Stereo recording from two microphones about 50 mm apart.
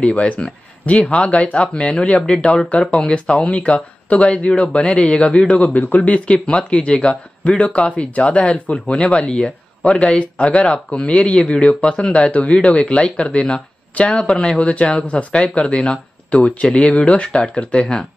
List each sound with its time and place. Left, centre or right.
0.0 s speech: left